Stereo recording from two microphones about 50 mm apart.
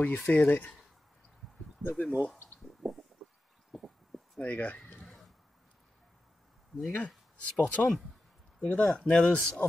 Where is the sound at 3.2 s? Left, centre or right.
Centre.